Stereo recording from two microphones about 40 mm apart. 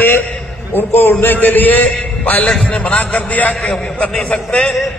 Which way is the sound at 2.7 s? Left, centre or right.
Left.